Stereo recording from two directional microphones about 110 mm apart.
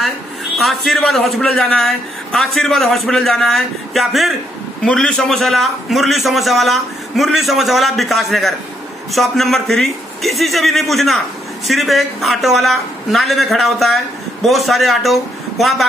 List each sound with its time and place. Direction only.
0.6 s a man's voice: centre (ahead or behind)